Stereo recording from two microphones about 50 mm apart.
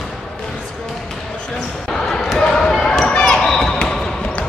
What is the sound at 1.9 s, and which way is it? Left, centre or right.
Basketball bounce, centre.